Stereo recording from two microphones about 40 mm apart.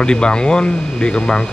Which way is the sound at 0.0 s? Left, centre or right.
Left.